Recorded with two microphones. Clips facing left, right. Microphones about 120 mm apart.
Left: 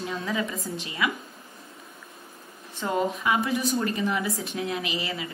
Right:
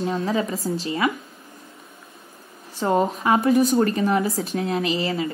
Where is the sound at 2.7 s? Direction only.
40° right (ahead or behind).